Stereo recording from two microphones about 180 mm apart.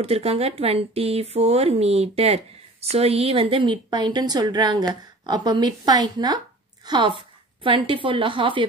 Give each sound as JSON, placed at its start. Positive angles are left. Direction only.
{"t": 0.0, "sound": "a woman's voice", "side_deg": -35}